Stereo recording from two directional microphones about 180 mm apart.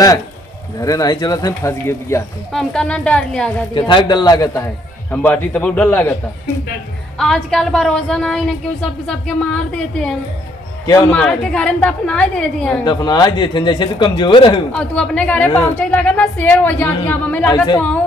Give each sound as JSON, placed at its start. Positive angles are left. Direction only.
{"t": 0.7, "sound": "a man's voice", "side_deg": 20}
{"t": 2.5, "sound": "a woman's voice", "side_deg": 5}
{"t": 3.7, "sound": "a man's voice", "side_deg": 25}
{"t": 7.2, "sound": "a woman's voice", "side_deg": 0}
{"t": 12.8, "sound": "a man's voice", "side_deg": 20}
{"t": 14.7, "sound": "a woman's voice", "side_deg": 5}
{"t": 17.5, "sound": "a man's voice", "side_deg": 20}